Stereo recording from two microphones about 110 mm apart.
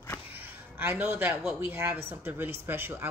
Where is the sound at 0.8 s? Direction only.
20° right (ahead or behind).